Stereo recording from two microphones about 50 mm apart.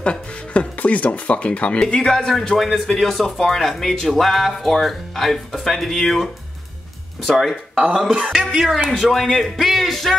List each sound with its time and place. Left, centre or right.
0.0 s speech: left
1.8 s speech: centre
8.1 s speech: centre
9.1 s speech: centre